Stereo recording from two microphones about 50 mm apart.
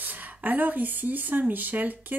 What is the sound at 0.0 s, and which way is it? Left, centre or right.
A woman's voice, right.